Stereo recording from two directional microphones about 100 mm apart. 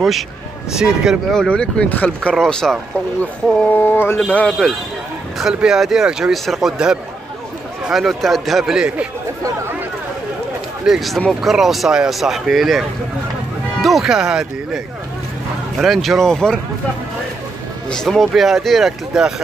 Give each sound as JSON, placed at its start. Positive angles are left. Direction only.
{"t": 0.7, "sound": "speech", "side_deg": -5}
{"t": 3.7, "sound": "speech", "side_deg": 20}
{"t": 5.4, "sound": "speech", "side_deg": -5}
{"t": 10.9, "sound": "speech", "side_deg": 0}
{"t": 15.8, "sound": "speech", "side_deg": 0}
{"t": 17.8, "sound": "speech", "side_deg": 5}